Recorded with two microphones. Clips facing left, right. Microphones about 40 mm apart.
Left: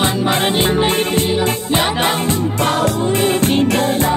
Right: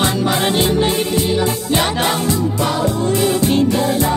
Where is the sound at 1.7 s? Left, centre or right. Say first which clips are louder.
Left 1 dB; left.